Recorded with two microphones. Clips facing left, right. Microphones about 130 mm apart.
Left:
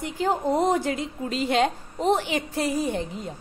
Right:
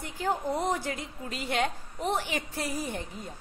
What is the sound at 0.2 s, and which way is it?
A woman's voice, 25° left (ahead or behind).